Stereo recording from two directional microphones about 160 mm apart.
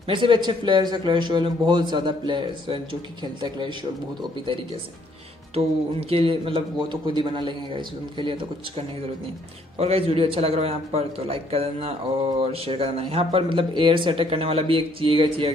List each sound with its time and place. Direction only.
0.1 s a man's voice: 30° right (ahead or behind)
5.5 s a man's voice: 35° right (ahead or behind)